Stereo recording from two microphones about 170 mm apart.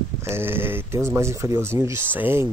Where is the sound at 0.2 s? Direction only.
15° right (ahead or behind).